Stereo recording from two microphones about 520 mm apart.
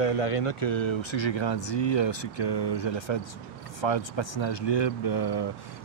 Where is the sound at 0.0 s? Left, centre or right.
Left.